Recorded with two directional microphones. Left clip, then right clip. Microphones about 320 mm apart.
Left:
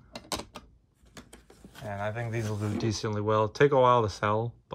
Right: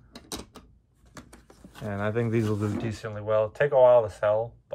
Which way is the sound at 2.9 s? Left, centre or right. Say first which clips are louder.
Even; centre.